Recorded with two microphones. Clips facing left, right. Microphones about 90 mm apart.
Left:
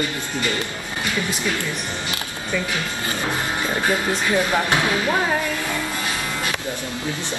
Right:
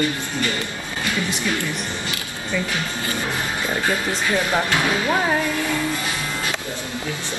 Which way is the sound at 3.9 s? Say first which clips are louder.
Left 2 dB; 20° left (ahead or behind).